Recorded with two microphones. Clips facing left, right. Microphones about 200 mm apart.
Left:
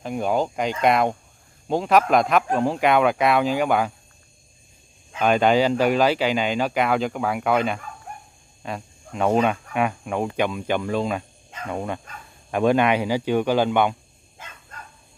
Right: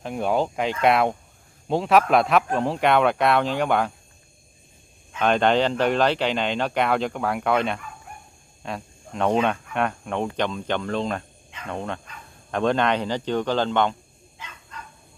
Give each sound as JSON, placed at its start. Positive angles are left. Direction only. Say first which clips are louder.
{"t": 0.0, "sound": "speech", "louder": "even", "side_deg": 0}
{"t": 5.2, "sound": "speech", "louder": "left 2 dB", "side_deg": 5}
{"t": 14.4, "sound": "dog", "louder": "right 1 dB", "side_deg": 50}